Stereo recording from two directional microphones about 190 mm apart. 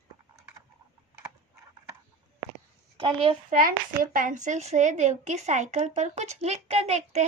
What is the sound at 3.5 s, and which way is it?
A woman's voice, 45° right (ahead or behind).